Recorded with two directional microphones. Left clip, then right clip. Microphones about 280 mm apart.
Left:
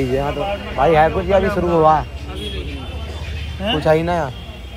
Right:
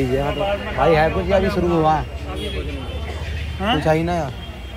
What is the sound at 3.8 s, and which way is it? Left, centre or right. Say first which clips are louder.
Speech: left 6 dB; centre.